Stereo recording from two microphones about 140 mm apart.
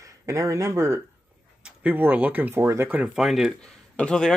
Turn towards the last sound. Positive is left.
turn(degrees=5)  # may be behind; listen again after turning